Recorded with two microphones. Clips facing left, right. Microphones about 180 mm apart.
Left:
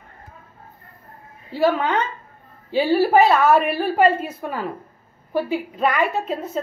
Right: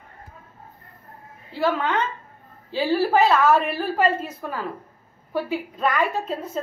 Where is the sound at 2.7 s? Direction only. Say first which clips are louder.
Left 4 dB; 10° left (ahead or behind).